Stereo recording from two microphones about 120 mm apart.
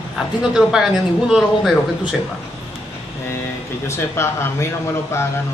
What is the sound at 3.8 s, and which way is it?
Speech, 20° left (ahead or behind).